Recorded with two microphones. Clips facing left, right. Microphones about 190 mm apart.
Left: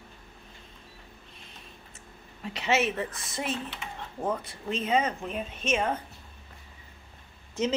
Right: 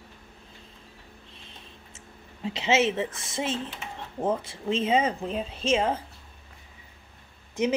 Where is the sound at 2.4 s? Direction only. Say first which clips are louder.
Right 3 dB; 25° right (ahead or behind).